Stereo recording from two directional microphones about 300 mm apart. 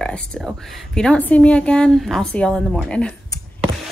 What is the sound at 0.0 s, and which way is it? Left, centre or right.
A woman's voice, centre.